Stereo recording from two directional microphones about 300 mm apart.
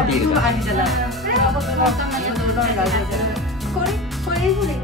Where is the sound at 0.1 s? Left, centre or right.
Centre.